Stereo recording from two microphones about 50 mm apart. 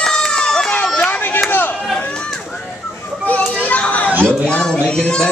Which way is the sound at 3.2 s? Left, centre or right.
Left.